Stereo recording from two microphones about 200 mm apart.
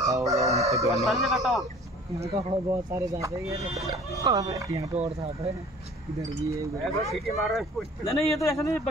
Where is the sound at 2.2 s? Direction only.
30° right (ahead or behind).